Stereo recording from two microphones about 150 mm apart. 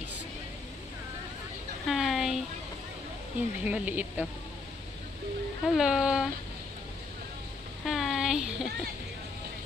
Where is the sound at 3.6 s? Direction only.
10° right (ahead or behind).